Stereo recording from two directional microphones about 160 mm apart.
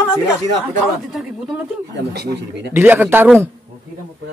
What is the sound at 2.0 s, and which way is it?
Speech, 90° right.